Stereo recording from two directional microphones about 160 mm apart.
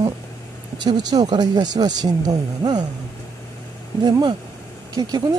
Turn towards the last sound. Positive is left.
turn(degrees=-25)  # may be behind; listen again after turning